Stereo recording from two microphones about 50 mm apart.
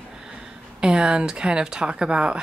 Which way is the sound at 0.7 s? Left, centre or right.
Centre.